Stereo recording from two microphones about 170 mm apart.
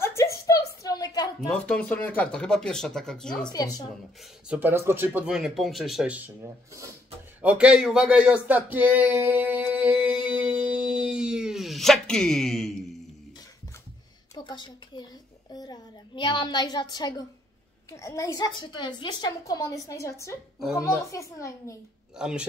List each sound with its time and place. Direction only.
0.0 s a sound: 15° left (ahead or behind)
1.5 s speech: 10° left (ahead or behind)
4.5 s speech: 10° right (ahead or behind)
7.4 s a sound: 5° right (ahead or behind)
14.3 s a woman's voice: 25° left (ahead or behind)
22.1 s speech: 5° right (ahead or behind)